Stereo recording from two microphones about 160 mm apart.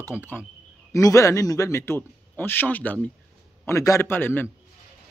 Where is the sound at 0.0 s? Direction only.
10° left (ahead or behind).